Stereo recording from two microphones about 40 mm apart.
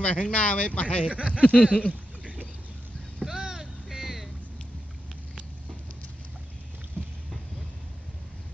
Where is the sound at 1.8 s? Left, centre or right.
Left.